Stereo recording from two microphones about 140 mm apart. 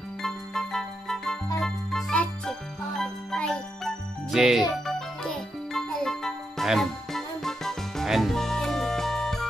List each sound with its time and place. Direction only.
0.2 s music: centre (ahead or behind)